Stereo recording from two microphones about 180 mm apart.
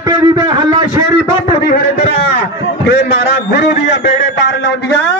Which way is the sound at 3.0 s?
70° left (ahead or behind).